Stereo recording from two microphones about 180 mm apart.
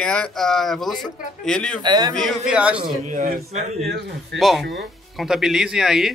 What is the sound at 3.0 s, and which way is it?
Speech, 45° right (ahead or behind).